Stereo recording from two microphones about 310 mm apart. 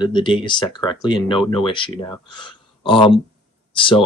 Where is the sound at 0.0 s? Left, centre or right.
Centre.